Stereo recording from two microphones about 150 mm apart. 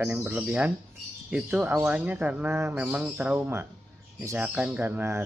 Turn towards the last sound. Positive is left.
turn(degrees=-15)  # may be behind; listen again after turning